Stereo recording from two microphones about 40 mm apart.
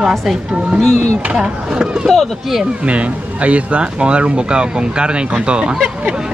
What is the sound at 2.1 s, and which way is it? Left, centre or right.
Speech, centre.